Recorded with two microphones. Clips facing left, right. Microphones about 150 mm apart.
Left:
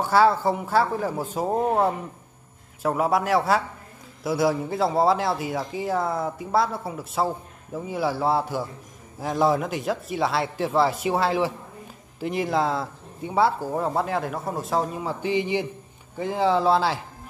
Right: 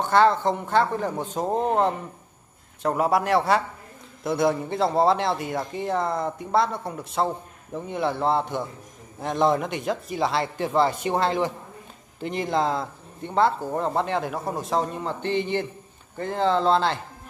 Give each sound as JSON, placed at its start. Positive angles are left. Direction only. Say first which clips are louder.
{"t": 0.0, "sound": "a man's voice", "louder": "even", "side_deg": 5}